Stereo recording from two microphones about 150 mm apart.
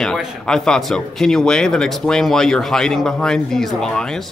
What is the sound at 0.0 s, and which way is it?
Speech, centre (ahead or behind).